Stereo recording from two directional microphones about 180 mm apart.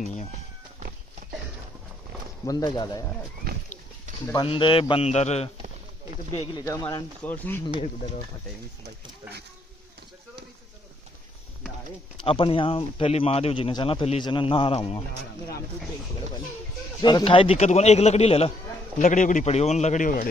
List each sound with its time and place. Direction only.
2.4 s a man's voice: 20° left (ahead or behind)
4.3 s a man's voice: 25° left (ahead or behind)
6.5 s a man's voice: 20° left (ahead or behind)
12.2 s speech: 30° left (ahead or behind)
17.0 s speech: 25° left (ahead or behind); by 20.2 s 45° left (ahead or behind)